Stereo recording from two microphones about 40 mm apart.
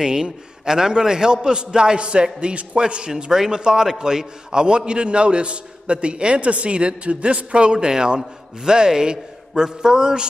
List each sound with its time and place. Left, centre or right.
0.0 s a man's voice: centre